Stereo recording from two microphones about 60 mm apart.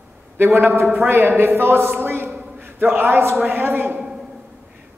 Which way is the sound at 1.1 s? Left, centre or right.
Right.